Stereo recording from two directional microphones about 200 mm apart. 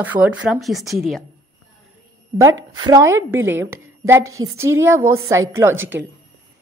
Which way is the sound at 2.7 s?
20° right (ahead or behind).